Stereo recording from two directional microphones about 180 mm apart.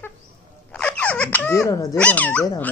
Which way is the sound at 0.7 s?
5° left (ahead or behind).